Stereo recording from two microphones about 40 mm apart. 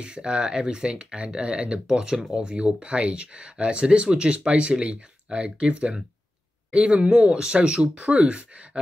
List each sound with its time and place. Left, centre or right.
0.0 s speech: right